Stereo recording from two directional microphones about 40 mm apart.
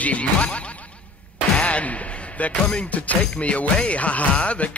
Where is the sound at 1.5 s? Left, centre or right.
Left.